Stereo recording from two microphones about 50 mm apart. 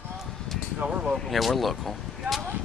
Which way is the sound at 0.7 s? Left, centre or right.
Right.